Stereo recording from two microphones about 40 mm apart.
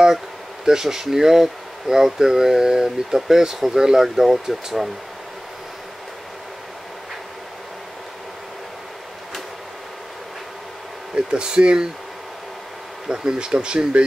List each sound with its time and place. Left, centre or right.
0.7 s speech: centre
11.1 s speech: right
13.1 s speech: right